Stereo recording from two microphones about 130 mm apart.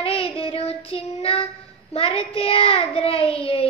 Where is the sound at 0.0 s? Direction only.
45° left (ahead or behind).